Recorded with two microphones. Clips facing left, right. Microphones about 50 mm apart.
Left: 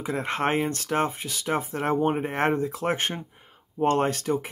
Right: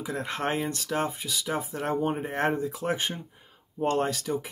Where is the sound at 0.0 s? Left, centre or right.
Left.